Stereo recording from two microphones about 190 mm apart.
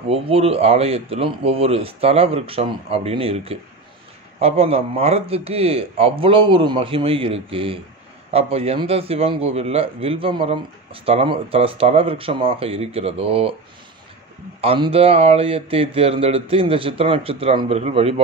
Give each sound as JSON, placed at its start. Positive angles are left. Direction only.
{"t": 0.1, "sound": "a man's voice", "side_deg": -30}
{"t": 14.6, "sound": "a man's voice", "side_deg": -30}